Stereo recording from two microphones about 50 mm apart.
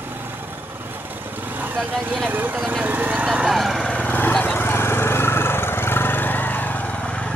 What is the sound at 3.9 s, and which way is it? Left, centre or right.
Vehicle, left.